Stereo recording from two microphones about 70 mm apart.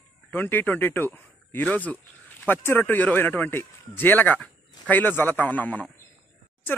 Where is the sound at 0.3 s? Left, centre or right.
Left.